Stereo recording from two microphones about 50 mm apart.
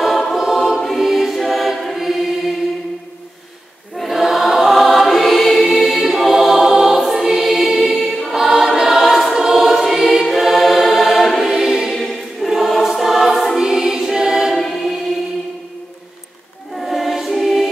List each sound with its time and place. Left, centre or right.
0.0 s choir: centre
1.0 s music: centre
2.0 s choir: centre
3.9 s choir: centre
11.4 s choir: centre
13.6 s music: centre
14.6 s choir: centre
16.7 s choir: centre